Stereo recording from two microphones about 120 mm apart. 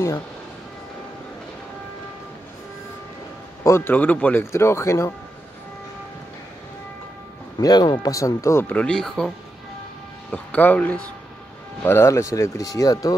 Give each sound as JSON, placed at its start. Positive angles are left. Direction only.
{"t": 3.6, "sound": "speech", "side_deg": 20}
{"t": 3.9, "sound": "speech", "side_deg": 10}
{"t": 7.6, "sound": "speech", "side_deg": 35}
{"t": 8.7, "sound": "speech", "side_deg": 5}
{"t": 10.3, "sound": "speech", "side_deg": 15}
{"t": 11.8, "sound": "speech", "side_deg": 20}